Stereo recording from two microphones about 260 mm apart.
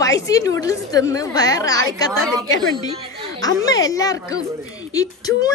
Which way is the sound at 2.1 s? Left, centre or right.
Centre.